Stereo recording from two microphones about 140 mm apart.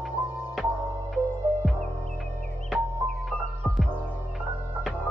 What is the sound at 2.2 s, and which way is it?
Music, centre (ahead or behind).